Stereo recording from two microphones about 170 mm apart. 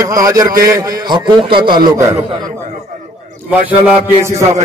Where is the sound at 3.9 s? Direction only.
15° right (ahead or behind).